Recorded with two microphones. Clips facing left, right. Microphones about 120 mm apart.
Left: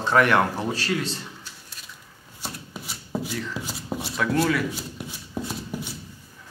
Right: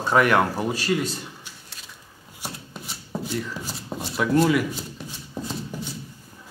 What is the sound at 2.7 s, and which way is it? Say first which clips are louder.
Chopping: even; 5° left (ahead or behind).